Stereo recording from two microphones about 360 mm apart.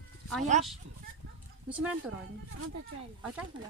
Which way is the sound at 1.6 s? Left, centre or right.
Centre.